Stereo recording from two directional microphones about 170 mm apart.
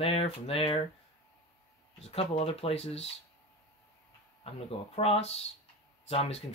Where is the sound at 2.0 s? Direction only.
40° left (ahead or behind).